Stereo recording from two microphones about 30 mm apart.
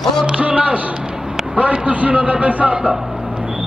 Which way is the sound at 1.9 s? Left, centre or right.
Right.